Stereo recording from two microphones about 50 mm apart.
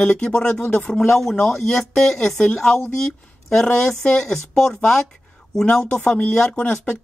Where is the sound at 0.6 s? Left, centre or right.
Left.